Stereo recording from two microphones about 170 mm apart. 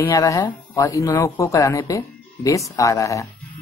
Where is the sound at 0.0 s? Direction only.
20° left (ahead or behind).